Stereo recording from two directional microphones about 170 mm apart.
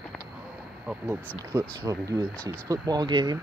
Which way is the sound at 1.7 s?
20° right (ahead or behind).